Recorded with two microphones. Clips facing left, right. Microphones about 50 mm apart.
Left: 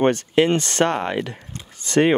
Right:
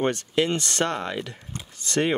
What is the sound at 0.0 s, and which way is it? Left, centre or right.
Speech, left.